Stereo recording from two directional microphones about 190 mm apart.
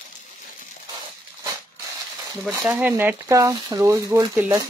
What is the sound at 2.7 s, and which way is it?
Speech, 10° right (ahead or behind).